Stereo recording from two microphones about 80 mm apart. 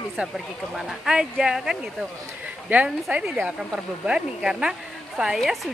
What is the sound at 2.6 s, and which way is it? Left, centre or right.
Speech, centre.